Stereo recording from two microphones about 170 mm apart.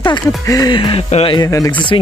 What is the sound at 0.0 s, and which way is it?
Speech, 25° left (ahead or behind).